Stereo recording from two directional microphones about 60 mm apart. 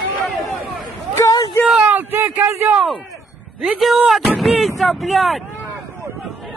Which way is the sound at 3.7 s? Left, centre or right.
Centre.